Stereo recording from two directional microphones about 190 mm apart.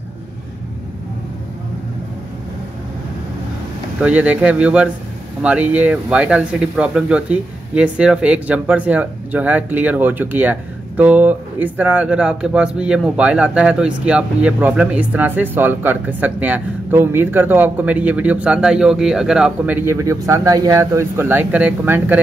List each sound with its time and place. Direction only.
4.0 s speech: 10° right (ahead or behind)